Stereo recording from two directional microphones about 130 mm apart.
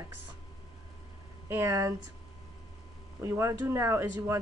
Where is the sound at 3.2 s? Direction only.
20° right (ahead or behind).